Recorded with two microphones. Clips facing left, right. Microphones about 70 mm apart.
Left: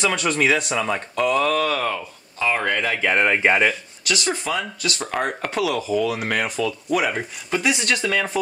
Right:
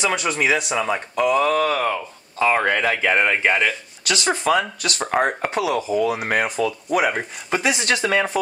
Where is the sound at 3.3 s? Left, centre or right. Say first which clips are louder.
Left 1 dB; centre.